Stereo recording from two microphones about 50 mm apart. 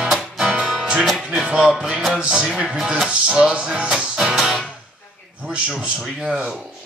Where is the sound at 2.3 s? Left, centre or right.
Centre.